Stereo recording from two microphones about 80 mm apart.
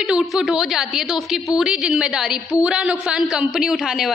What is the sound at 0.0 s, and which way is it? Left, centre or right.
A woman's voice, centre.